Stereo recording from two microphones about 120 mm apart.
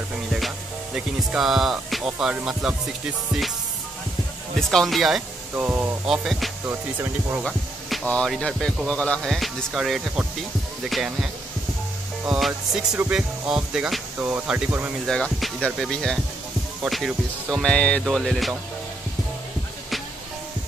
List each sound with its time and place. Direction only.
0.9 s speech: 5° right (ahead or behind)
4.6 s speech: 5° left (ahead or behind)
5.6 s speech: 15° right (ahead or behind)
6.0 s speech: 5° right (ahead or behind)
6.6 s speech: 15° right (ahead or behind)
7.4 s speech: 5° left (ahead or behind)
12.3 s speech: 5° right (ahead or behind)
15.0 s speech: 5° left (ahead or behind)